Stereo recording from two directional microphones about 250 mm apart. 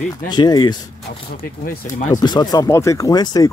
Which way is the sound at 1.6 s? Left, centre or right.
Left.